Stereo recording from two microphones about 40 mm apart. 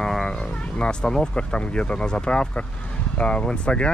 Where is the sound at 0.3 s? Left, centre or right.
Left.